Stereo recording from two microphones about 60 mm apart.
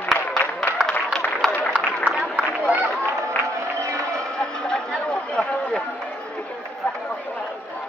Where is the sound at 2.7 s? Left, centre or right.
Right.